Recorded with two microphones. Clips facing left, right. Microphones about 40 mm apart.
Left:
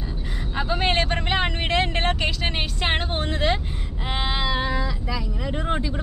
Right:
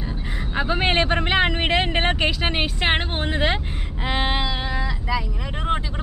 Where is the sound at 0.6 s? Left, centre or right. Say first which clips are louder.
Right 2 dB; centre.